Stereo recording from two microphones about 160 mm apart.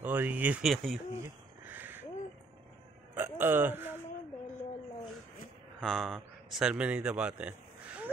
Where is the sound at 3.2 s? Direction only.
15° right (ahead or behind).